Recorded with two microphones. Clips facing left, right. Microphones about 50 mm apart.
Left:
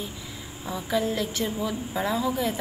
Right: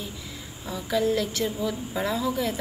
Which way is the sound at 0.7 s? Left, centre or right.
Centre.